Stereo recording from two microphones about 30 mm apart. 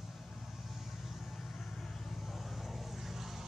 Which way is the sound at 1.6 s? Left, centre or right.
Centre.